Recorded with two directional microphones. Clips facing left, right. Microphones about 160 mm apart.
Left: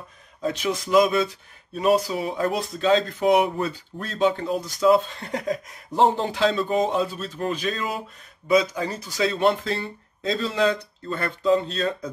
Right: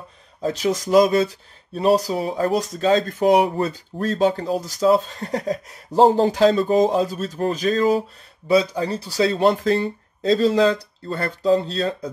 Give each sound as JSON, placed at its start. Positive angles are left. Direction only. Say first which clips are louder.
{"t": 0.4, "sound": "speech", "louder": "right 4 dB", "side_deg": -40}